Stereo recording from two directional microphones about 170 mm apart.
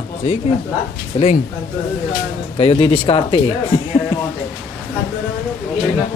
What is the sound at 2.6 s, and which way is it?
Speech, 35° left (ahead or behind).